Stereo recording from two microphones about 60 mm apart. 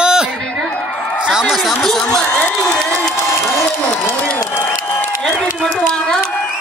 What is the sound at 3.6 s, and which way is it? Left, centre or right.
Applause, centre.